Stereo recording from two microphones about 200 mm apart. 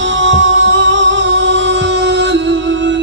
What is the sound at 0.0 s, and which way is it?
Music, 70° right (ahead or behind).